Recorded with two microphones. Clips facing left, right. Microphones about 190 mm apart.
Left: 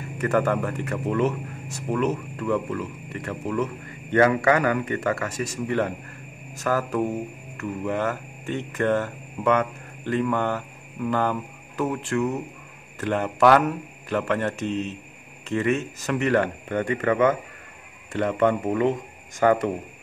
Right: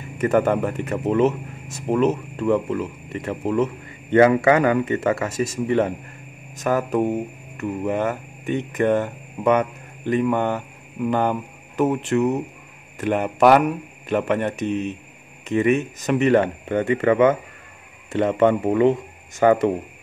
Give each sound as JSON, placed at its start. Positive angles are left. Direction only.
{"t": 0.2, "sound": "speech", "side_deg": -20}
{"t": 6.5, "sound": "mantra", "side_deg": -20}
{"t": 12.9, "sound": "speech", "side_deg": -15}